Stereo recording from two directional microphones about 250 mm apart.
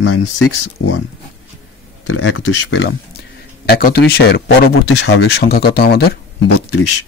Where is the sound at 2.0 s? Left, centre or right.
Left.